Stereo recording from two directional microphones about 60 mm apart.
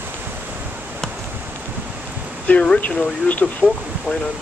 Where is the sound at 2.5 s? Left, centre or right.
Left.